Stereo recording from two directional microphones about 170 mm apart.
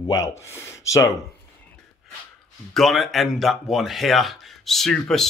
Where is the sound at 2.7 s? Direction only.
Centre (ahead or behind).